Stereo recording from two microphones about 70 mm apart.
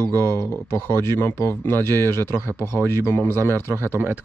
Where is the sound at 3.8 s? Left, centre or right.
Right.